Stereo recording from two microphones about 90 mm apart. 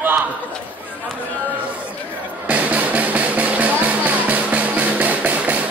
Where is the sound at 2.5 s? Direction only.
15° right (ahead or behind).